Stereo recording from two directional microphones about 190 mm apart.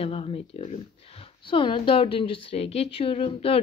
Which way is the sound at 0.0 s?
30° left (ahead or behind).